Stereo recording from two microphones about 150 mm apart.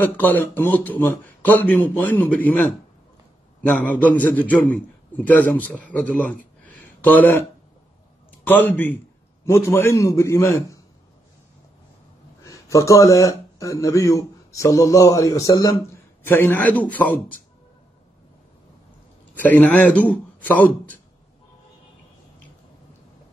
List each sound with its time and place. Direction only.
0.0 s a man's voice: 10° left (ahead or behind)
8.5 s a man's voice: 15° left (ahead or behind)
12.4 s a man's voice: 20° left (ahead or behind)
19.3 s a man's voice: 10° left (ahead or behind)